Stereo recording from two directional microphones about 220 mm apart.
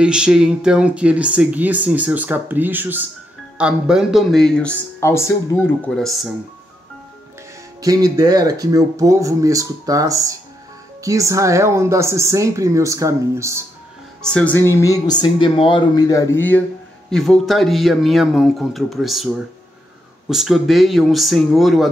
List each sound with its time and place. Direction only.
0.0 s speech: 5° right (ahead or behind); by 5.6 s 10° left (ahead or behind)
5.9 s speech: centre (ahead or behind)
7.8 s speech: 15° right (ahead or behind)
14.2 s speech: 5° left (ahead or behind)
20.2 s speech: centre (ahead or behind)